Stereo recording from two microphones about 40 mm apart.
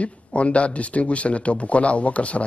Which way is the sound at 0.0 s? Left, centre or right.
Left.